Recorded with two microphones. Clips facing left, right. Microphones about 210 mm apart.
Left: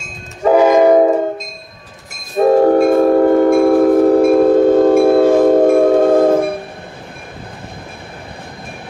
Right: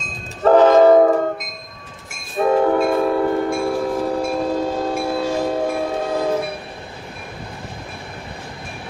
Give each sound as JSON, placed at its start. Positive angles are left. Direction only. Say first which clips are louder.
{"t": 0.0, "sound": "train", "louder": "left 1 dB", "side_deg": 10}
{"t": 2.3, "sound": "train", "louder": "left 6 dB", "side_deg": 40}